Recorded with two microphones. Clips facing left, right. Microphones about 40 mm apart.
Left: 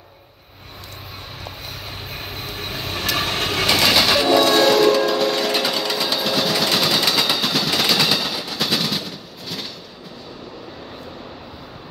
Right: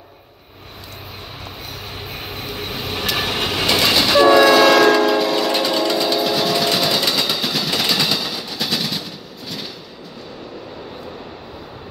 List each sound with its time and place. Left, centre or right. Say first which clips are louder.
2.1 s train: right 2 dB; centre
4.6 s train: right 3 dB; right
4.9 s a sound: right 3 dB; centre
5.2 s sewing machine: right 1 dB; centre